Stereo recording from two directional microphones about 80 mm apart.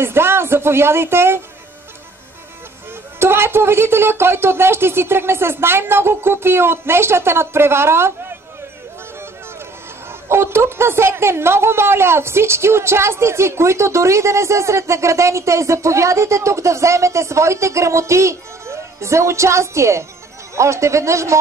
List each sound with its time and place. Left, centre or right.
0.0 s a woman's voice: right
3.2 s a woman's voice: right
10.2 s a woman's voice: right